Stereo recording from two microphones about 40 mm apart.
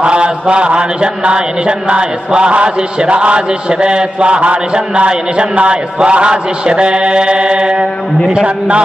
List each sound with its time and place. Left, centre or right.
0.0 s mantra: right